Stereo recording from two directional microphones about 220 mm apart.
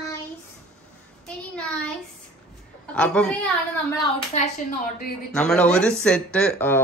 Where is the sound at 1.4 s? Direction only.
5° left (ahead or behind).